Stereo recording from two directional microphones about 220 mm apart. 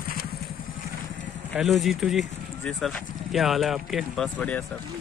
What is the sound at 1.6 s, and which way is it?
Speech, centre (ahead or behind).